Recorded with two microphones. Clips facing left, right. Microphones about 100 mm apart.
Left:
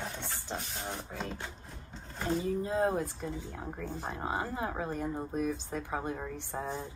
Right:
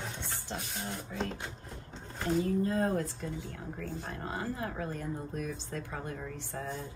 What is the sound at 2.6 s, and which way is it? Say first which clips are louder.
A woman's voice: even; 15° left (ahead or behind).